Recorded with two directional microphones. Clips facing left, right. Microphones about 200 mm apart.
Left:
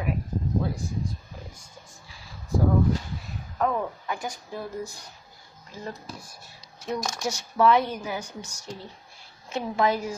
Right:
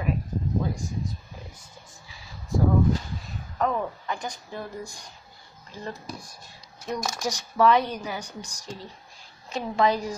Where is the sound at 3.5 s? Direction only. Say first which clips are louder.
Even; 5° left (ahead or behind).